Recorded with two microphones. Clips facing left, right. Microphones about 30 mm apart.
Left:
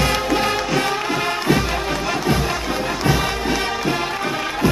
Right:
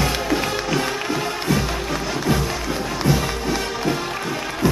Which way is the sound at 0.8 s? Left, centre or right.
Left.